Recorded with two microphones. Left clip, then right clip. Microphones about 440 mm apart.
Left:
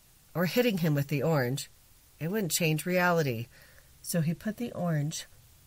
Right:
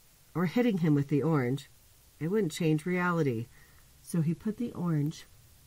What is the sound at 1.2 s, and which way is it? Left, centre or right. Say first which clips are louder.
Speech: left 2 dB; left.